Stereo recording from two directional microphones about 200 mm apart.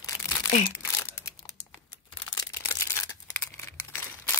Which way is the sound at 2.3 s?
15° left (ahead or behind).